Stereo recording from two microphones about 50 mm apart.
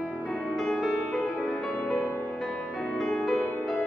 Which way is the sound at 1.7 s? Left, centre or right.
Left.